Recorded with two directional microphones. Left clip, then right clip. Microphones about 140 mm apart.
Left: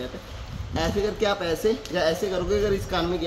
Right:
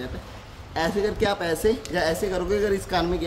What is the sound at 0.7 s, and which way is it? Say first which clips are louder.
Speech: right 1 dB; 20° right (ahead or behind).